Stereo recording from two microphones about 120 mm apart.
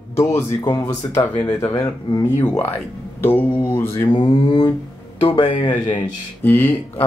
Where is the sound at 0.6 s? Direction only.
35° left (ahead or behind).